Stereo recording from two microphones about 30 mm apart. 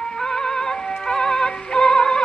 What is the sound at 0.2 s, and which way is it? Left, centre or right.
Music, left.